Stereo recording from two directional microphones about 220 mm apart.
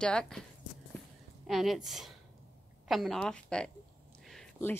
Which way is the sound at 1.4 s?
Centre (ahead or behind).